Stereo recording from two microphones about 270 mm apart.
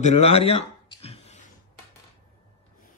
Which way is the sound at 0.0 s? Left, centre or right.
Left.